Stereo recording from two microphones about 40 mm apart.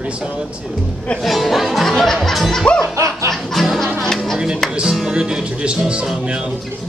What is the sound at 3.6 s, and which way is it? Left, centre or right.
Speech, centre.